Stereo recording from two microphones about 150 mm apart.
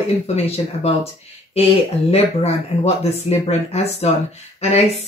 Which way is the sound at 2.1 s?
45° left (ahead or behind).